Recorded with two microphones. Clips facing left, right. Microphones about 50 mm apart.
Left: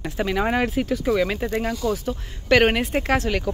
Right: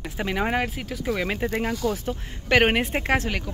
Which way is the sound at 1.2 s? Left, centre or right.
Centre.